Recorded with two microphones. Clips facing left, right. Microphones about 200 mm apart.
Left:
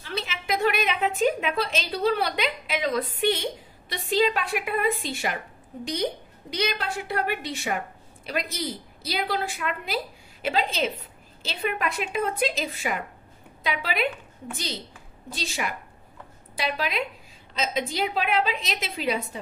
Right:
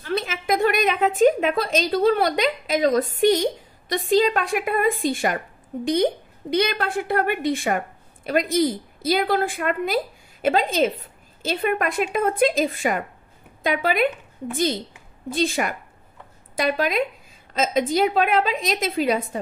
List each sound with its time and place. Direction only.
0.0 s a woman's voice: 50° right (ahead or behind)
6.5 s a woman's voice: 55° right (ahead or behind)